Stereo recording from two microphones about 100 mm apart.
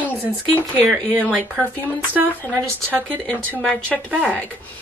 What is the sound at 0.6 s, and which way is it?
Speech, 15° left (ahead or behind).